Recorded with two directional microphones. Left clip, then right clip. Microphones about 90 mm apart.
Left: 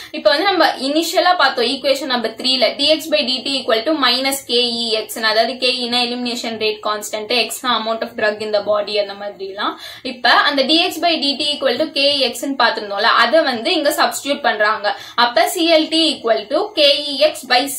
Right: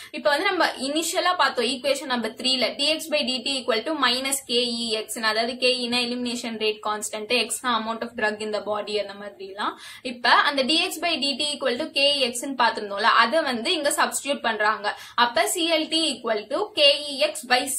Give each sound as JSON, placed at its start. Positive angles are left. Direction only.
{"t": 0.2, "sound": "a woman's voice", "side_deg": -45}
{"t": 10.2, "sound": "a woman's voice", "side_deg": -50}